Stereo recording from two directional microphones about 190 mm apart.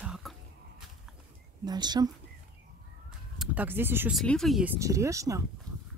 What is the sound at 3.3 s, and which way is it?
Speech, 10° right (ahead or behind).